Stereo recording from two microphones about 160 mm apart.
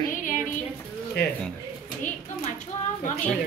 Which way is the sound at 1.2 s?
90° left.